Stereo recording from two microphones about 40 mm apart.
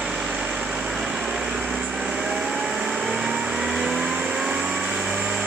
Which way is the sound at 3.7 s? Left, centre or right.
Centre.